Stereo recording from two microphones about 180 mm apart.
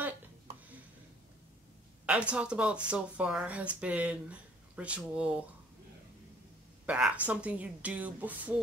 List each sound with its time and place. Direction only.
2.0 s speech: 5° right (ahead or behind)
6.9 s speech: 5° right (ahead or behind)